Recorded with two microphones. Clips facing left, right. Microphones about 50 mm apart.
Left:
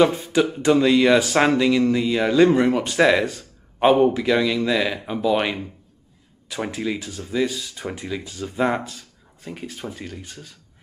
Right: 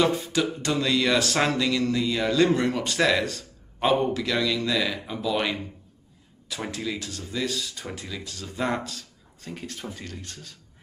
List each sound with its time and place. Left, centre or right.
0.0 s speech: centre